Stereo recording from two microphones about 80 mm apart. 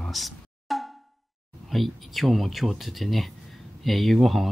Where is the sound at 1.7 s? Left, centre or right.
Centre.